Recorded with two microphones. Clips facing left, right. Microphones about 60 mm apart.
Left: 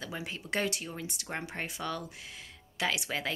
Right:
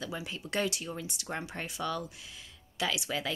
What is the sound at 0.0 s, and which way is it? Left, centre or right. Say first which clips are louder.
Speech: right 1 dB; left.